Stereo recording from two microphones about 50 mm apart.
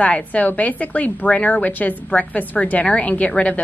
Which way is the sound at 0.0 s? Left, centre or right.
Left.